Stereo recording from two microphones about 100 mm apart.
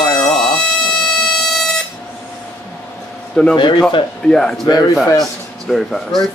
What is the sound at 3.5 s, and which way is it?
Speech, 50° left (ahead or behind).